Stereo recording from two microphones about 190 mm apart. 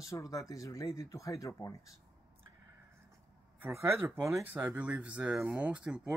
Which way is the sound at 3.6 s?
15° right (ahead or behind).